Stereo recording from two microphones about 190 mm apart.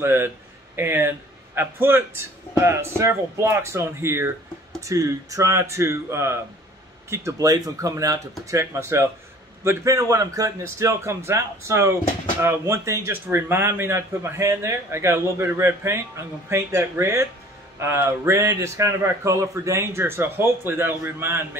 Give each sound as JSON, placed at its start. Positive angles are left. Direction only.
{"t": 0.0, "sound": "a man's voice", "side_deg": -15}